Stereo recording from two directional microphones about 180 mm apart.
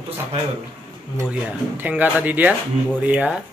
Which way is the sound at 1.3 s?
10° right (ahead or behind).